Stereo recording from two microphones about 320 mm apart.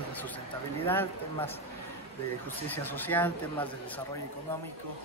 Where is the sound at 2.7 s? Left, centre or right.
Centre.